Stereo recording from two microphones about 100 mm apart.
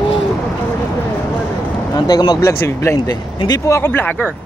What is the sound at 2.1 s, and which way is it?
Speech, 45° left (ahead or behind).